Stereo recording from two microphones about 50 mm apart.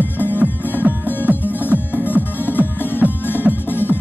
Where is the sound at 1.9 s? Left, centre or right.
Left.